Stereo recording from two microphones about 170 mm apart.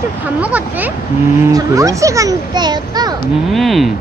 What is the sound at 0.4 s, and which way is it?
A child's voice, 10° right (ahead or behind).